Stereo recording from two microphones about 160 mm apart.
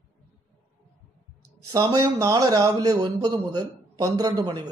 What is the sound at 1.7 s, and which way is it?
A man's voice, 25° right (ahead or behind).